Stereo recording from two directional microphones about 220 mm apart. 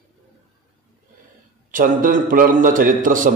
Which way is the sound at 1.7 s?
40° right (ahead or behind).